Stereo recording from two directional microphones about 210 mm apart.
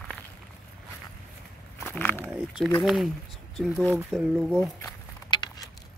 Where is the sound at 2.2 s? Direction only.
5° right (ahead or behind).